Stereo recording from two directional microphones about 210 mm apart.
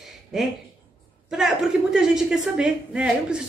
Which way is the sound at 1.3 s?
Centre (ahead or behind).